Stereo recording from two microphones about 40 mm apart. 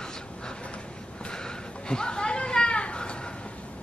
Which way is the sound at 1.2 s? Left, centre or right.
Centre.